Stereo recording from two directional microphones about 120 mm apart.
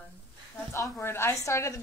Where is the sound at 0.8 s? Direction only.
20° left (ahead or behind).